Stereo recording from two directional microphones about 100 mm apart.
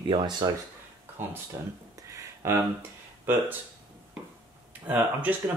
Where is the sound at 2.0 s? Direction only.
25° right (ahead or behind).